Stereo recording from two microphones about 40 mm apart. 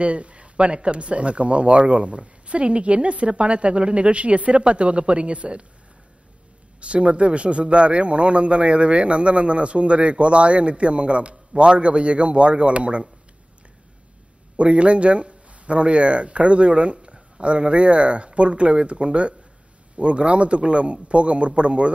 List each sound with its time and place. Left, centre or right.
0.0 s speech: right
6.8 s speech: right
14.6 s speech: right